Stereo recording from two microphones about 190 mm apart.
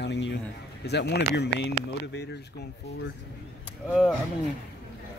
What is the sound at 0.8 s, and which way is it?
Speech, 60° left (ahead or behind).